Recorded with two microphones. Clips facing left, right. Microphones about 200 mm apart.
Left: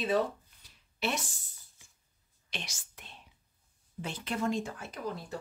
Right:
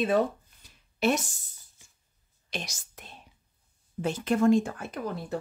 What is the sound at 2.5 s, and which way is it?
Speech, 40° right (ahead or behind).